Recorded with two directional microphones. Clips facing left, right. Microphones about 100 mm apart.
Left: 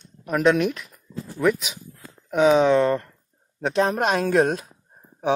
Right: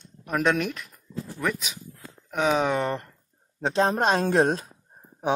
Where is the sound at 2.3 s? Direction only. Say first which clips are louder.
Left 7 dB; 5° left (ahead or behind).